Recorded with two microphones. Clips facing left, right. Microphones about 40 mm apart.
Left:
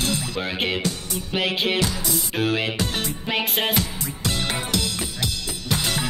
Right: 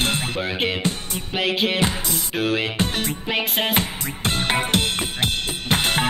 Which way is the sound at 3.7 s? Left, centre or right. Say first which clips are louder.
Right 2 dB; right.